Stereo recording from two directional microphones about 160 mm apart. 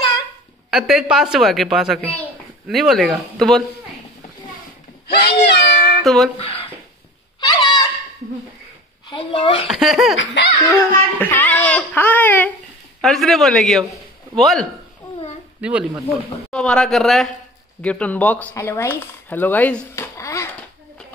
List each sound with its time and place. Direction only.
0.7 s a woman's voice: centre (ahead or behind)
2.0 s a child's voice: 10° left (ahead or behind)
5.0 s meow: 90° left
6.0 s a woman's voice: centre (ahead or behind)
6.4 s speech: 35° left (ahead or behind)
7.3 s fowl: 25° left (ahead or behind)
9.1 s speech: 30° left (ahead or behind)
9.7 s a woman's voice: centre (ahead or behind)
10.4 s a child's voice: 90° left
11.1 s a woman's voice: 10° left (ahead or behind); by 16.0 s 5° right (ahead or behind)
16.4 s a woman's voice: 5° left (ahead or behind)